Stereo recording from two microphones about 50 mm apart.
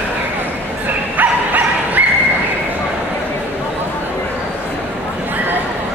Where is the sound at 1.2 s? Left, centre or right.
Right.